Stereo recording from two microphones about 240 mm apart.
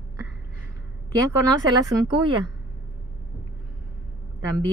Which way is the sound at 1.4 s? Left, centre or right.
Centre.